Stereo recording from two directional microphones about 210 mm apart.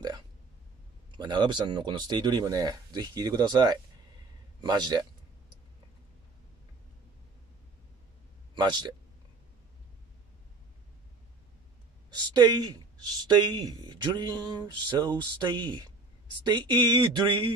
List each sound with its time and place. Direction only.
1.1 s a man's voice: 20° right (ahead or behind)
8.5 s speech: 20° right (ahead or behind)
12.1 s speech: 20° right (ahead or behind)